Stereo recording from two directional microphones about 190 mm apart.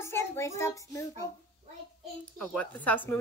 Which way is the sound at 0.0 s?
15° left (ahead or behind).